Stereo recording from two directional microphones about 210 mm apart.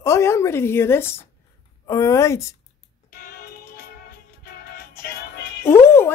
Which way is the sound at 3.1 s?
45° left (ahead or behind).